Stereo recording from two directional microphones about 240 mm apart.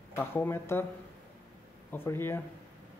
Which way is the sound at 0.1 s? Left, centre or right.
Centre.